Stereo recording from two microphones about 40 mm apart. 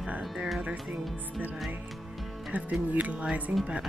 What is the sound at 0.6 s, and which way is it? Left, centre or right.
Speech, right.